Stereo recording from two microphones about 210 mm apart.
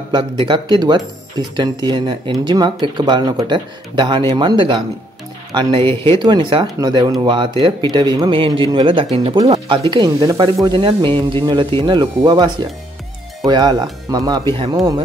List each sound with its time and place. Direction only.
0.1 s speech: 25° right (ahead or behind)
13.5 s speech: 20° right (ahead or behind)